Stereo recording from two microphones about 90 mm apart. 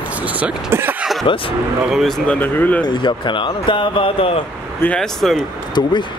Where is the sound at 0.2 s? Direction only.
15° right (ahead or behind).